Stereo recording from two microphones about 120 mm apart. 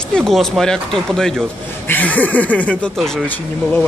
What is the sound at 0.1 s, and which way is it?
Speech, 5° left (ahead or behind).